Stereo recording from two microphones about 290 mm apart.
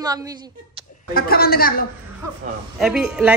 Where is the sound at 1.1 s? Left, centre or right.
Left.